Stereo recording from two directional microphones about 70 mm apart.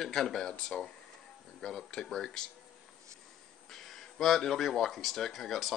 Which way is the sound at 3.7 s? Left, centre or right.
Centre.